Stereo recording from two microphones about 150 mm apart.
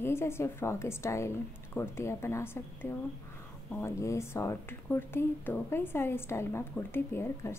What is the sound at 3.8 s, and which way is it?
A woman's voice, 20° left (ahead or behind).